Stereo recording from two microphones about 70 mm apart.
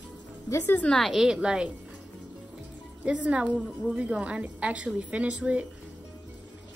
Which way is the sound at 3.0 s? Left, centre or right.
Centre.